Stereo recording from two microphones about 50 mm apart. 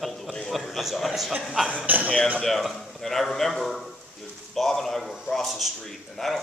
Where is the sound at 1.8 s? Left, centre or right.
Right.